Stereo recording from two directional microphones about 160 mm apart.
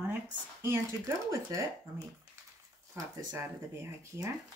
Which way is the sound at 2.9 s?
15° right (ahead or behind).